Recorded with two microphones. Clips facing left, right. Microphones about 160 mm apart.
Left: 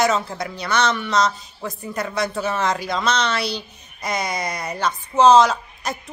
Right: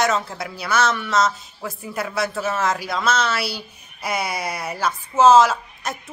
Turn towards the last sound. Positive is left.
turn(degrees=-5)  # may be behind; listen again after turning